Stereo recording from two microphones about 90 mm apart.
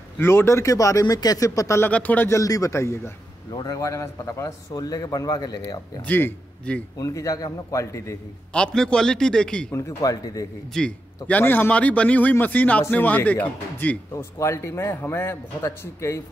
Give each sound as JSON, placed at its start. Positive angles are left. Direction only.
{"t": 0.2, "sound": "a man's voice", "side_deg": 25}
{"t": 1.9, "sound": "a man's voice", "side_deg": 15}
{"t": 2.2, "sound": "a man's voice", "side_deg": 35}
{"t": 3.5, "sound": "a man's voice", "side_deg": 45}
{"t": 6.0, "sound": "a man's voice", "side_deg": 20}
{"t": 7.0, "sound": "a man's voice", "side_deg": 40}
{"t": 8.5, "sound": "a man's voice", "side_deg": 10}
{"t": 9.7, "sound": "a man's voice", "side_deg": 35}
{"t": 10.7, "sound": "a man's voice", "side_deg": 10}
{"t": 11.4, "sound": "a man's voice", "side_deg": 25}
{"t": 14.1, "sound": "a man's voice", "side_deg": 30}